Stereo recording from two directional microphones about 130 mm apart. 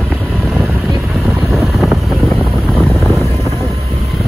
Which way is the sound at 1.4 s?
Centre (ahead or behind).